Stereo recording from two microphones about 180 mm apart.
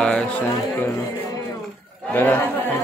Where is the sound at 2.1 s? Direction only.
10° left (ahead or behind).